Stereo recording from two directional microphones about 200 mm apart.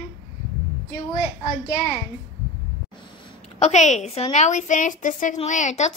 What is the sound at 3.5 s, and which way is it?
A woman's voice, 35° left (ahead or behind).